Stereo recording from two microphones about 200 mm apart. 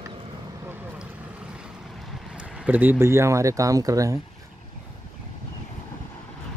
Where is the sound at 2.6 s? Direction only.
10° right (ahead or behind).